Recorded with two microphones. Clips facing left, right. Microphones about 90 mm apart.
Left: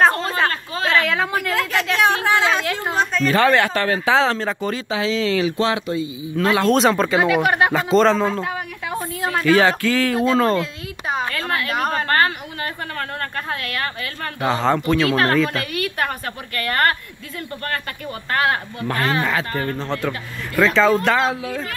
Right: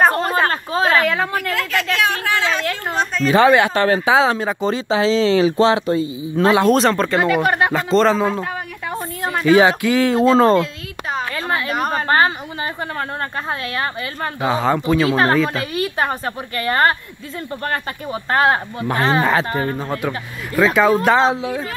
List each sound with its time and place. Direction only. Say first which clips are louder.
0.5 s a sound: right 4 dB; 40° right (ahead or behind)
1.0 s a woman's voice: right 2 dB; centre (ahead or behind)
3.3 s speech: right 5 dB; 15° right (ahead or behind)
4.6 s speech: right 8 dB; 25° right (ahead or behind)
6.3 s a woman's voice: right 4 dB; 25° right (ahead or behind)
6.7 s a man's voice: right 1 dB; centre (ahead or behind); by 10.6 s 30° right (ahead or behind)
11.3 s speech: right 2 dB; 15° right (ahead or behind)
11.7 s a woman's voice: right 1 dB; 5° right (ahead or behind)
12.1 s a woman's voice: right 3 dB; 20° right (ahead or behind)
14.4 s speech: right 1 dB; 5° right (ahead or behind)
15.8 s a woman's voice: right 6 dB; 25° right (ahead or behind)
21.2 s a woman's voice: right 4 dB; 25° right (ahead or behind)